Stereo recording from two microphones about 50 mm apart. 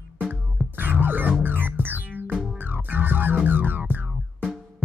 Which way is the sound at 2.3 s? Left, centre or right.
Centre.